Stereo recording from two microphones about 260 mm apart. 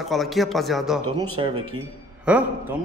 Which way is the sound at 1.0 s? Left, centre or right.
Centre.